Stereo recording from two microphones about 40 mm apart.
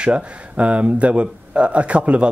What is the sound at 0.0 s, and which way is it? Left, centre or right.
Speech, right.